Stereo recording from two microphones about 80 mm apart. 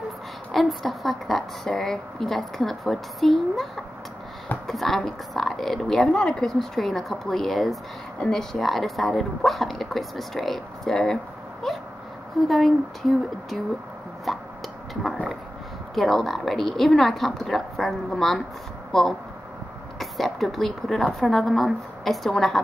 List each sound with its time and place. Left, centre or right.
0.5 s a woman's voice: centre
11.6 s dog: centre
12.4 s a woman's voice: centre
14.3 s a sound: centre
15.9 s a woman's voice: centre